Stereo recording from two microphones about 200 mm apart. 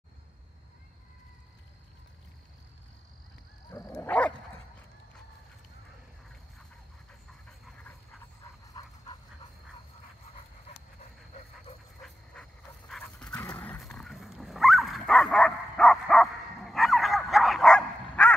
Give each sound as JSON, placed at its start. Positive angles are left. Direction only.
{"t": 3.7, "sound": "dog", "side_deg": 15}
{"t": 7.1, "sound": "pant", "side_deg": 5}
{"t": 8.7, "sound": "dog", "side_deg": 20}
{"t": 12.0, "sound": "dog", "side_deg": 5}